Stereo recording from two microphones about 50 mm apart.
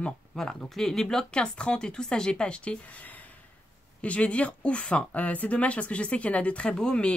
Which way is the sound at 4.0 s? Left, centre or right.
Left.